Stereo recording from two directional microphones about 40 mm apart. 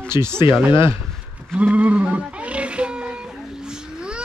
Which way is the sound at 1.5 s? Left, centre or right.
Right.